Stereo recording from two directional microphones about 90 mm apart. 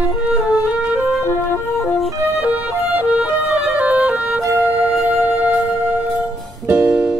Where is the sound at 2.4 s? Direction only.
15° right (ahead or behind).